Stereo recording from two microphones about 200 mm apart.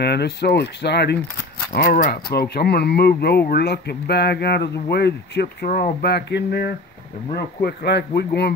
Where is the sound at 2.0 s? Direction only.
45° left (ahead or behind).